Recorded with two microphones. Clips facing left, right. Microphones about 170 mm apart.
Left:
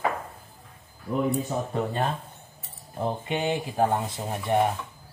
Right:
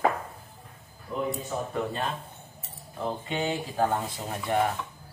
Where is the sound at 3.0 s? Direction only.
20° left (ahead or behind).